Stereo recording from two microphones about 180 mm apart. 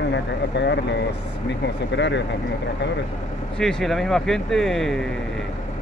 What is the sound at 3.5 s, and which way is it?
Speech, 5° left (ahead or behind).